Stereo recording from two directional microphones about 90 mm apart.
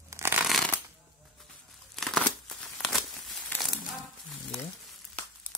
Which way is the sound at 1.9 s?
5° left (ahead or behind).